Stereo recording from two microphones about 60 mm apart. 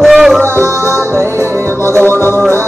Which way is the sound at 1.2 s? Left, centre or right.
Right.